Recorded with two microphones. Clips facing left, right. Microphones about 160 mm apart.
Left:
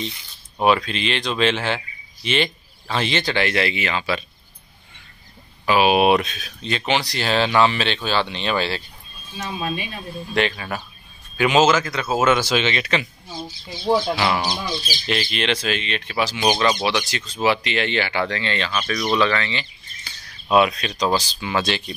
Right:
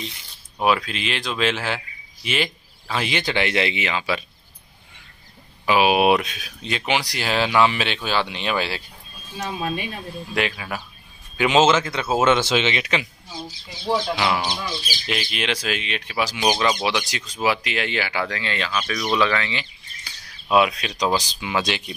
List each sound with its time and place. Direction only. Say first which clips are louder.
0.6 s speech: left 2 dB; 5° right (ahead or behind)
5.7 s speech: left 1 dB; 10° right (ahead or behind)
10.3 s speech: left 3 dB; 5° right (ahead or behind)
11.3 s speech: even; 20° right (ahead or behind)
13.9 s speech: left 1 dB; centre (ahead or behind)